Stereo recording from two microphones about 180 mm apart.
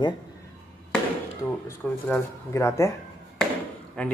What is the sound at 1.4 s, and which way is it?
Speech, 10° left (ahead or behind).